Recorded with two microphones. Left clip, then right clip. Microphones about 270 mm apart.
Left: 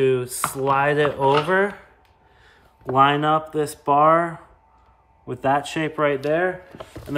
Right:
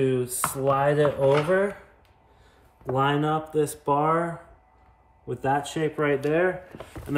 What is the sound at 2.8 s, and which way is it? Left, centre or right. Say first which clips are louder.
Speech: left 7 dB; left.